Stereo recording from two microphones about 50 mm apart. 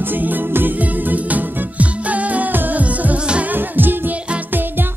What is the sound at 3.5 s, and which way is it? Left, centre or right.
Music, right.